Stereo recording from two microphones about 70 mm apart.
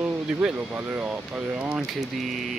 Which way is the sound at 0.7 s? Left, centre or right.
Right.